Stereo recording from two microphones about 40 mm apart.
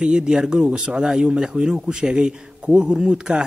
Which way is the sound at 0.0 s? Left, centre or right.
Right.